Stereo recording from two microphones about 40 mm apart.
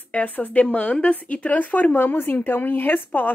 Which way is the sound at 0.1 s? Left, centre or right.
Left.